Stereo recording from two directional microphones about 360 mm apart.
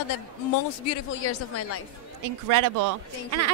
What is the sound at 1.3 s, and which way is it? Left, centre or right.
Speech, left.